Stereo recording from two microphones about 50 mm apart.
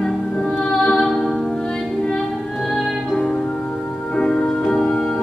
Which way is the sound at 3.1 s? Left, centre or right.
Centre.